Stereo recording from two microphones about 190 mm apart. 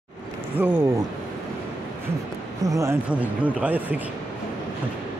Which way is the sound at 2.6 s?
15° right (ahead or behind).